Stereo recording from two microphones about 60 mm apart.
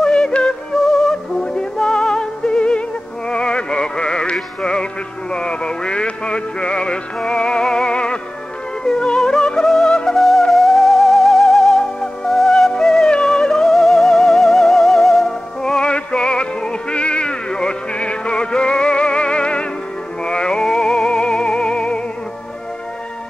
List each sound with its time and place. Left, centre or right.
0.0 s music: centre